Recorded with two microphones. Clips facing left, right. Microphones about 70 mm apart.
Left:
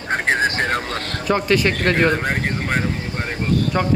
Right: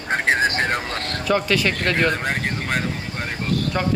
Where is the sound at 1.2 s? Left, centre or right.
Left.